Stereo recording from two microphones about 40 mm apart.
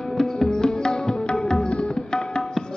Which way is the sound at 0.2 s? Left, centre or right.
Centre.